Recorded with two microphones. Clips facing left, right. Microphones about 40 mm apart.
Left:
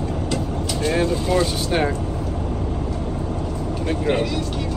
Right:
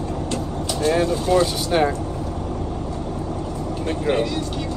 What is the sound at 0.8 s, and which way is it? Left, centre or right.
Vehicle, centre.